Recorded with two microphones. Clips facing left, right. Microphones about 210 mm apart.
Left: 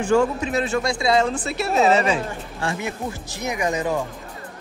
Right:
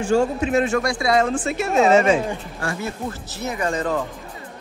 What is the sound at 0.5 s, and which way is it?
Speech, 35° left (ahead or behind).